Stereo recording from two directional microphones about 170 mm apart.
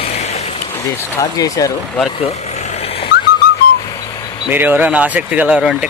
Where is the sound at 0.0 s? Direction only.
40° left (ahead or behind).